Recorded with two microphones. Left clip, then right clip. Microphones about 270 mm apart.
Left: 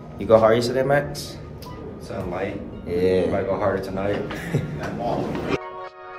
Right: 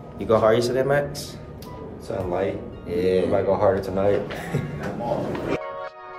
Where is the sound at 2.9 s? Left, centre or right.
Centre.